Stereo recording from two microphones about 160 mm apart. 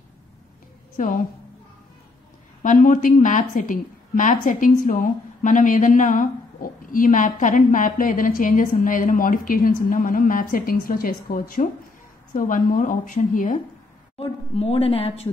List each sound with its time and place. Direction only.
0.9 s a woman's voice: 55° left (ahead or behind)
2.6 s a woman's voice: 55° left (ahead or behind)
14.5 s speech: 40° left (ahead or behind)